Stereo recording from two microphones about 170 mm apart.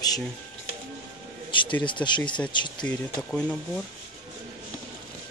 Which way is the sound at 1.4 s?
30° left (ahead or behind).